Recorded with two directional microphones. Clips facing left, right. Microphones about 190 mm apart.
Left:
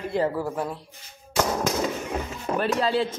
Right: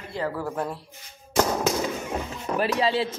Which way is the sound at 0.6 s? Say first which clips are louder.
Even; centre (ahead or behind).